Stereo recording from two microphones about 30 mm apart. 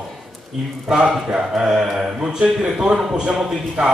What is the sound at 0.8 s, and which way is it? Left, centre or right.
Speech, right.